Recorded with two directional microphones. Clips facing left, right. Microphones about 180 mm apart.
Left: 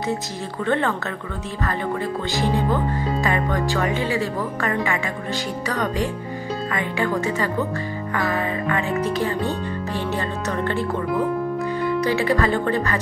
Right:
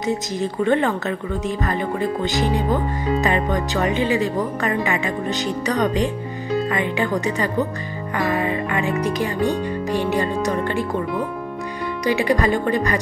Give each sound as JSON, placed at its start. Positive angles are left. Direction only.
{"t": 0.4, "sound": "speech", "side_deg": -15}
{"t": 12.0, "sound": "speech", "side_deg": -15}